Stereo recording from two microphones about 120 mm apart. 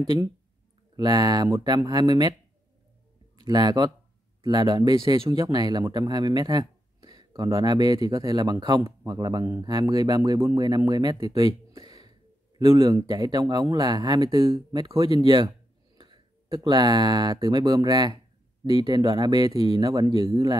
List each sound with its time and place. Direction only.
0.0 s speech: 35° right (ahead or behind)
3.3 s a man's voice: 35° right (ahead or behind)
15.1 s speech: 40° right (ahead or behind)